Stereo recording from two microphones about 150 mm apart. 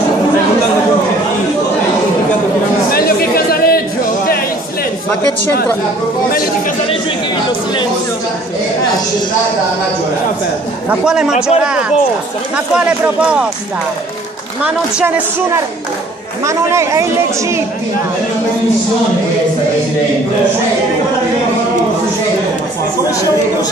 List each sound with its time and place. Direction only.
2.9 s chatter: 85° left
10.9 s a man's voice: 5° right (ahead or behind)
14.6 s speech: 10° right (ahead or behind)